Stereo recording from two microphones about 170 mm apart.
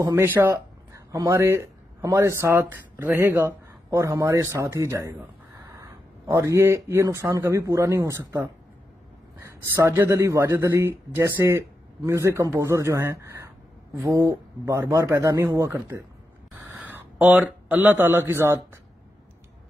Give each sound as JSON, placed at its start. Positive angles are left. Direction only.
{"t": 0.1, "sound": "a man's voice", "side_deg": -10}